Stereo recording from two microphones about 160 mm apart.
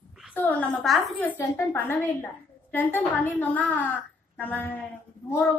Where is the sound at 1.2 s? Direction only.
10° left (ahead or behind).